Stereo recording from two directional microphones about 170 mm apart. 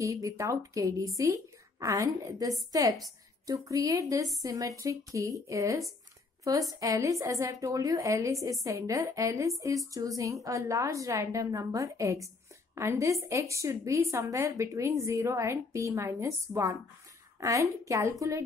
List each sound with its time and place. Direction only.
0.0 s a woman's voice: 20° right (ahead or behind)